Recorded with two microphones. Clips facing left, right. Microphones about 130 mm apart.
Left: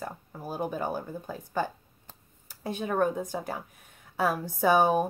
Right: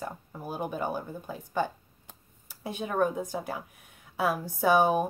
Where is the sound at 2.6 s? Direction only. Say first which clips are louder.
Left 1 dB; 5° right (ahead or behind).